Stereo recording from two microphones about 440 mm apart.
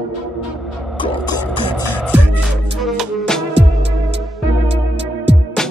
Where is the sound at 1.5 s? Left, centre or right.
Centre.